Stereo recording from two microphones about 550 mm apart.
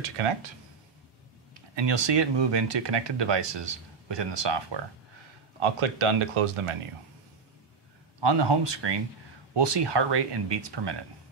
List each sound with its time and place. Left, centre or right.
0.0 s speech: right
1.5 s speech: right
5.6 s speech: right
8.2 s speech: right